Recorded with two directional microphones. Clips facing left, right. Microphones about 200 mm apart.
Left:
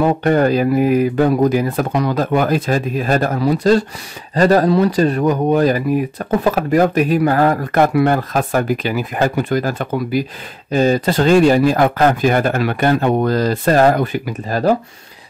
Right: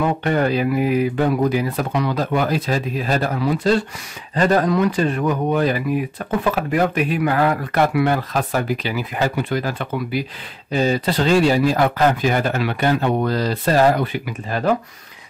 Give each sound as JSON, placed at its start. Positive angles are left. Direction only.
{"t": 0.0, "sound": "speech", "side_deg": 45}